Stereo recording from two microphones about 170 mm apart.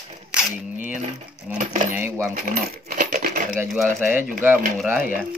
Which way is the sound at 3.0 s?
55° right (ahead or behind).